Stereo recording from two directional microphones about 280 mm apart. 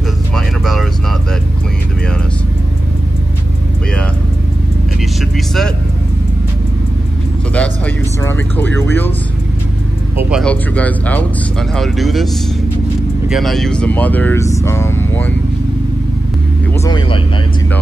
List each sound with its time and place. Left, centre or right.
7.5 s vehicle: centre
10.1 s music: centre
11.7 s speech: centre
13.3 s speech: centre
16.8 s speech: centre